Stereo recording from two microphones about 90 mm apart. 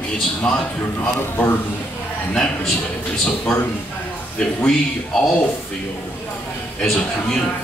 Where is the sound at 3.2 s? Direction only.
10° left (ahead or behind).